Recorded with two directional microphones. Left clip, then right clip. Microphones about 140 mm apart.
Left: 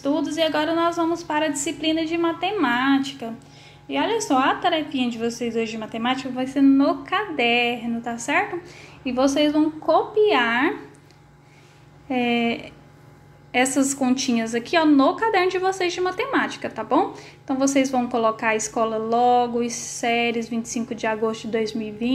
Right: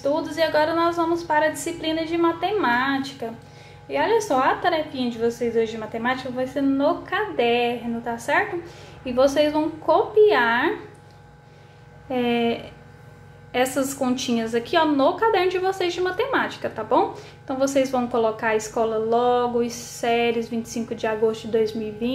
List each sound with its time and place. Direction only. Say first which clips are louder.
0.0 s a woman's voice: even; 25° left (ahead or behind)
12.1 s a woman's voice: even; 25° left (ahead or behind)